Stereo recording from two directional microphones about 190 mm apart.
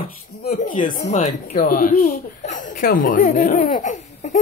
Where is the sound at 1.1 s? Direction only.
40° left (ahead or behind).